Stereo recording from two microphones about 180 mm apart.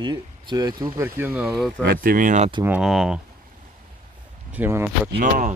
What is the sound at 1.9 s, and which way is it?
Speech, 50° right (ahead or behind).